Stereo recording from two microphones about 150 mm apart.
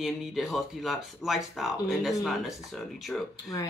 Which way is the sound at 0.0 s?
Centre (ahead or behind).